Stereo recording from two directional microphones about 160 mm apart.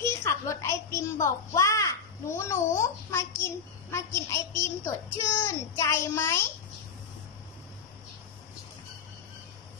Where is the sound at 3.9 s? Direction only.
15° left (ahead or behind).